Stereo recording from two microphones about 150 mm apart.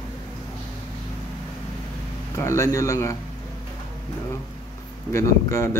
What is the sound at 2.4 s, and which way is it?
Speech, 20° left (ahead or behind).